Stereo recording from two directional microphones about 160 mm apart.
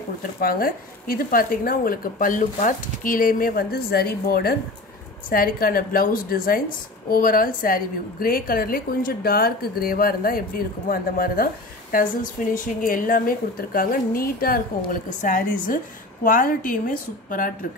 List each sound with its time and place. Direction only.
0.4 s a woman's voice: 65° left (ahead or behind)